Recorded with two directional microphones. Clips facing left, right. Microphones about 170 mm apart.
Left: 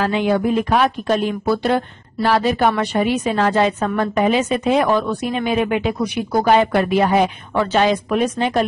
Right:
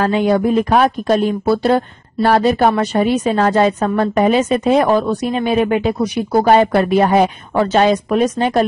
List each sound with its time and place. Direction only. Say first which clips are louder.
0.0 s a woman's voice: right 3 dB; 45° right (ahead or behind)
2.2 s a woman's voice: right 4 dB; 45° right (ahead or behind)